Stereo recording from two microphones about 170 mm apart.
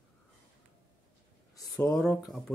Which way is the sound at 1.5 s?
20° left (ahead or behind).